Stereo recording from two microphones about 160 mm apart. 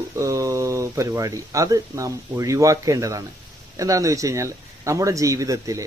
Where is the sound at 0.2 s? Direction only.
20° right (ahead or behind).